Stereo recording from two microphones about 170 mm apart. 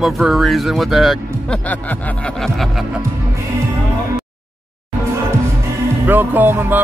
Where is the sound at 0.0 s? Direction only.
Centre (ahead or behind).